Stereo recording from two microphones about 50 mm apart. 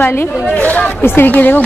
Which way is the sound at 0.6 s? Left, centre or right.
Left.